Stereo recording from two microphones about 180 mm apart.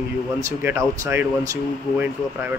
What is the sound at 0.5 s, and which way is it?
Speech, 15° right (ahead or behind).